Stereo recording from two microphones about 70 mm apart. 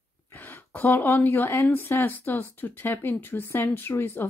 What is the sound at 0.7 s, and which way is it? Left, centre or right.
A woman's voice, left.